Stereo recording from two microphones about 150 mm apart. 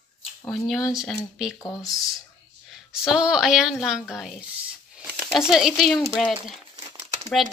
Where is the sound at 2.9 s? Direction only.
5° right (ahead or behind).